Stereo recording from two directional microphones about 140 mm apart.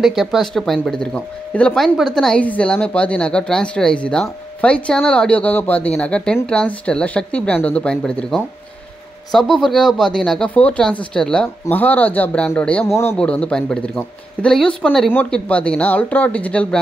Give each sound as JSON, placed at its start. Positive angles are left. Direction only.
{"t": 0.0, "sound": "a woman's voice", "side_deg": 0}
{"t": 12.8, "sound": "a man's voice", "side_deg": 20}
{"t": 13.2, "sound": "a woman's voice", "side_deg": 10}